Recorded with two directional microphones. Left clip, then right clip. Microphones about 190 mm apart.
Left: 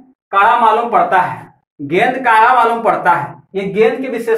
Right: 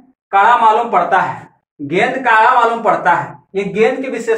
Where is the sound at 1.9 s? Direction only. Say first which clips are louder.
Left 1 dB; 20° left (ahead or behind).